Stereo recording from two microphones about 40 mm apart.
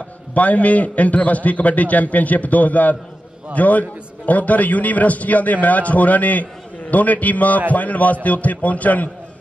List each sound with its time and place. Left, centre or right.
0.3 s a man's voice: left